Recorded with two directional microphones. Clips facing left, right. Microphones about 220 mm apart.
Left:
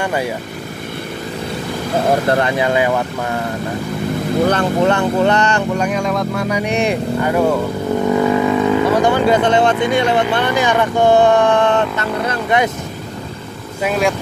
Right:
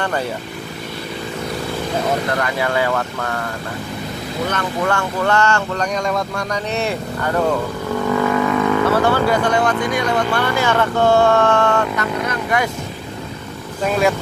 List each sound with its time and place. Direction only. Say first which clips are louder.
0.0 s speech: left 2 dB; 10° left (ahead or behind)
2.2 s speech: left 5 dB; 25° left (ahead or behind)
4.5 s speech: left 5 dB; 30° left (ahead or behind)
4.9 s speech: left 4 dB; 20° left (ahead or behind)
13.8 s speech: even; centre (ahead or behind)